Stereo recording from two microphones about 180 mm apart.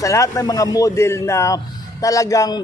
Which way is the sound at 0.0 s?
15° left (ahead or behind).